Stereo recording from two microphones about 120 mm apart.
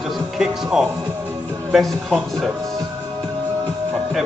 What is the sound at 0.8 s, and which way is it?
Music, 25° right (ahead or behind).